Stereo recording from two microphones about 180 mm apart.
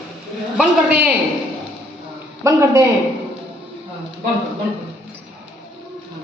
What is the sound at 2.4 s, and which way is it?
Speech, 15° right (ahead or behind).